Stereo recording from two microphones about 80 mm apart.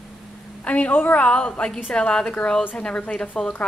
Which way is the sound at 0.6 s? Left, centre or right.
Centre.